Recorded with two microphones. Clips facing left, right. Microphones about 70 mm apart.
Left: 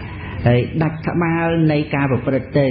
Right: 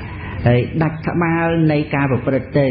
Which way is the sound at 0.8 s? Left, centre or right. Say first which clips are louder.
Right 1 dB; right.